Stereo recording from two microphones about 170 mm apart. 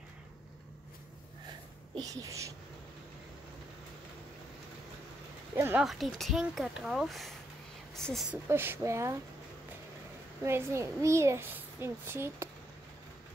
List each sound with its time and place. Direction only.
2.0 s speech: 20° right (ahead or behind)
5.6 s a child's voice: 15° right (ahead or behind)
5.9 s speech: centre (ahead or behind)
8.5 s a child's voice: 15° right (ahead or behind)
10.4 s a child's voice: 15° right (ahead or behind)